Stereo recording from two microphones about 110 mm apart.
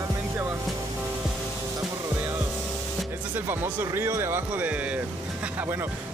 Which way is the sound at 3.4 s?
20° right (ahead or behind).